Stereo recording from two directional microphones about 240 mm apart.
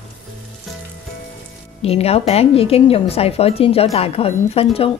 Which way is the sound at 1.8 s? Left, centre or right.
Left.